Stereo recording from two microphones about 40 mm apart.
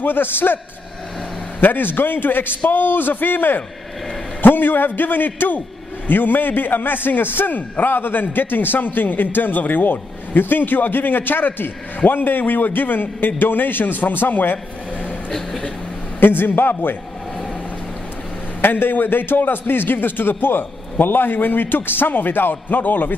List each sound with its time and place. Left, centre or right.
0.0 s a man's voice: left
1.6 s a man's voice: left
16.2 s a man's voice: left
18.6 s a man's voice: left